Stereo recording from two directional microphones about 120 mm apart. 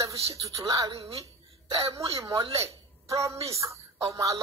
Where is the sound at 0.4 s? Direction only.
25° right (ahead or behind).